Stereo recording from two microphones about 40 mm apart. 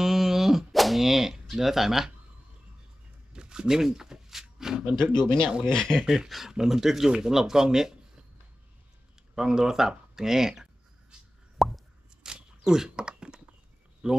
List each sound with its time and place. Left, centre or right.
0.0 s a sound: centre
3.3 s a sound: centre
4.9 s speech: centre
6.0 s speech: centre
9.3 s speech: centre
11.5 s plop: centre
12.2 s crunch: centre
14.0 s speech: right